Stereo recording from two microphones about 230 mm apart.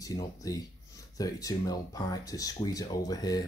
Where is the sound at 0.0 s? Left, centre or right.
Centre.